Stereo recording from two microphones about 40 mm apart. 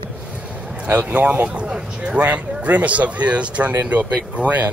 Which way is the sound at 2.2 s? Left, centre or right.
Right.